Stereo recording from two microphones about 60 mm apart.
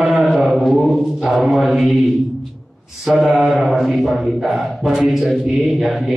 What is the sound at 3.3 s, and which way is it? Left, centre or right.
A man's voice, centre.